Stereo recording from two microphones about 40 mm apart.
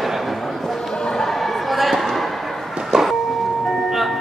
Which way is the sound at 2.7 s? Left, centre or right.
Centre.